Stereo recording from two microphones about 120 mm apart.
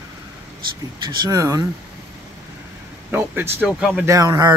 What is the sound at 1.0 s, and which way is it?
Speech, 35° right (ahead or behind).